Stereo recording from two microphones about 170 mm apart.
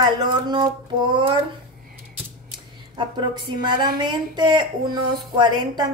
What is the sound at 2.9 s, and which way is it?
A woman's voice, 25° right (ahead or behind).